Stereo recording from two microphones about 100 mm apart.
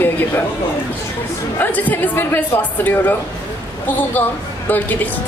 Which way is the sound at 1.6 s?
15° left (ahead or behind).